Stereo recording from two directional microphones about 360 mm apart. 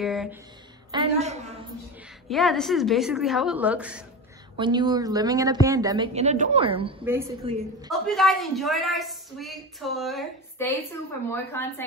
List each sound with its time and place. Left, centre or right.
0.0 s a woman's voice: centre
0.9 s a woman's voice: centre
2.2 s a woman's voice: centre